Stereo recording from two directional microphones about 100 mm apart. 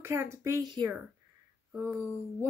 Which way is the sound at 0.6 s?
45° right (ahead or behind).